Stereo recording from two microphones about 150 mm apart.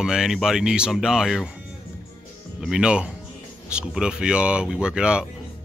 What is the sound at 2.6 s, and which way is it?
Speech, 5° right (ahead or behind).